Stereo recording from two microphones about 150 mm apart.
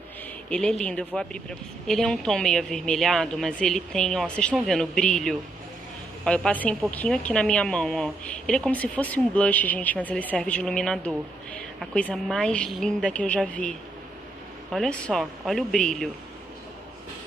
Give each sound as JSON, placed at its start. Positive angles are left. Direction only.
{"t": 0.5, "sound": "a woman's voice", "side_deg": 5}